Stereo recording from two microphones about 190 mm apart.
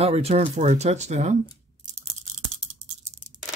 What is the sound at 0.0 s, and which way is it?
Speech, 35° right (ahead or behind).